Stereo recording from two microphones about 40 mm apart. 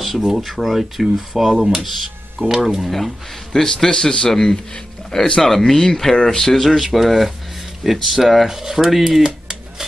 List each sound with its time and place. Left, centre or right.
0.0 s speech: centre
3.5 s a man's voice: centre
5.4 s a man's voice: centre
6.6 s speech: centre
9.2 s a sound: centre